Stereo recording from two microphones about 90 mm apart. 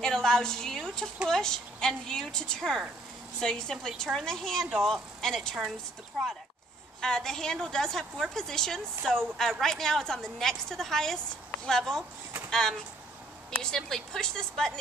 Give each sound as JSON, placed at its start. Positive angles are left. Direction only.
{"t": 0.0, "sound": "a woman's voice", "side_deg": 5}
{"t": 7.0, "sound": "a woman's voice", "side_deg": 5}